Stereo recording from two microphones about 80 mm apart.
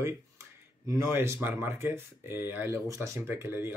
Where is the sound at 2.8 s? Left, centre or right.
Right.